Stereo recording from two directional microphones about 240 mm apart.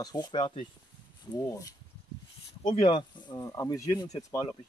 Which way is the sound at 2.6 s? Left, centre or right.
Left.